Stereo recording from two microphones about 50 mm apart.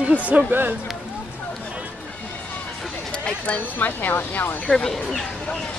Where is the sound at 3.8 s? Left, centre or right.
Left.